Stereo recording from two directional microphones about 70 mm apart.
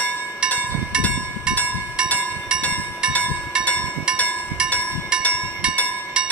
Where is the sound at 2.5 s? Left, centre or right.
Centre.